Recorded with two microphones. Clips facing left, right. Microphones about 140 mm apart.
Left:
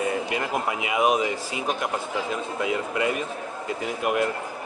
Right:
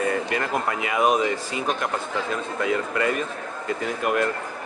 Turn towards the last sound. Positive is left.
turn(degrees=-45)  # may be behind; listen again after turning